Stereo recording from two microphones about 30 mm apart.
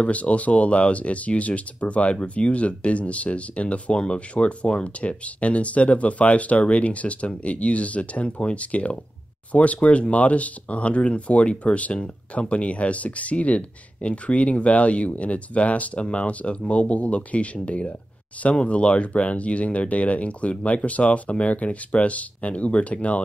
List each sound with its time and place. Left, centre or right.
0.0 s speech: left